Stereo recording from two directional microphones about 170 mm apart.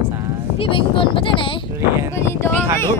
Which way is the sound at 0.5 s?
30° left (ahead or behind).